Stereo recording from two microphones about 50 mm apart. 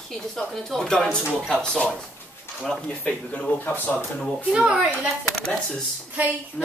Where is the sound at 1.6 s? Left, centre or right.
Centre.